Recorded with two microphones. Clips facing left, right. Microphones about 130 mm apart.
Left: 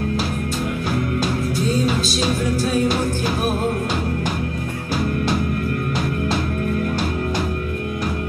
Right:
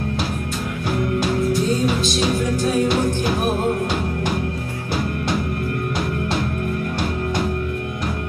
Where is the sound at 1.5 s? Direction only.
20° right (ahead or behind).